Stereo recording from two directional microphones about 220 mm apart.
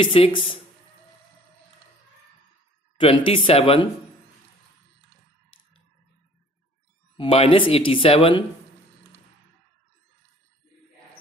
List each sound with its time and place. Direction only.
0.0 s speech: 25° left (ahead or behind)
3.0 s speech: 25° left (ahead or behind)
7.2 s speech: 25° left (ahead or behind)